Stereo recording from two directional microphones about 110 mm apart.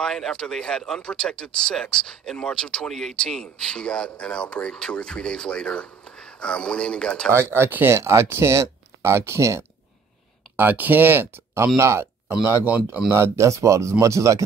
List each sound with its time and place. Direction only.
0.0 s speech: 5° left (ahead or behind)
7.3 s speech: 20° right (ahead or behind)
12.3 s speech: 10° right (ahead or behind)
13.1 s speech: 25° right (ahead or behind)